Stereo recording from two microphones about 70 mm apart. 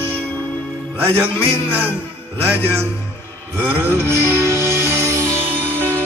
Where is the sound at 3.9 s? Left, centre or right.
Right.